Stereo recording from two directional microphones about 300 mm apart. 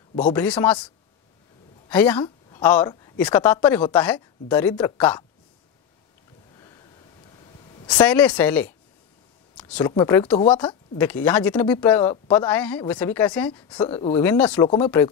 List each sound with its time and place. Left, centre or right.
0.3 s speech: centre
8.0 s speech: centre
11.0 s speech: centre
13.5 s speech: centre
14.2 s speech: centre